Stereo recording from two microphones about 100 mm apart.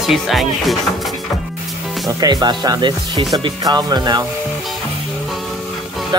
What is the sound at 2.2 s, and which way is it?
Speech, 45° right (ahead or behind).